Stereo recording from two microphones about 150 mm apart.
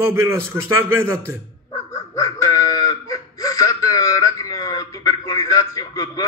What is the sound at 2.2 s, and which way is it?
Wail, 20° left (ahead or behind).